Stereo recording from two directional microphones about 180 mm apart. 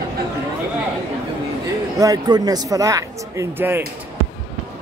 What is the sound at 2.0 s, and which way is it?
Speech, 20° right (ahead or behind).